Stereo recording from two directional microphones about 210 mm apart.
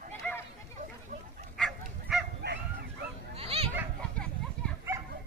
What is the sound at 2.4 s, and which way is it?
Dog, 50° right (ahead or behind).